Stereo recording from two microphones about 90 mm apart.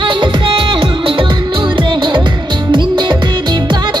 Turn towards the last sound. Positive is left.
turn(degrees=-60)  # may be behind; listen again after turning